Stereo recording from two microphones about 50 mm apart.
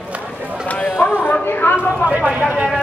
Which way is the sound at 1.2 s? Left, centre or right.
Left.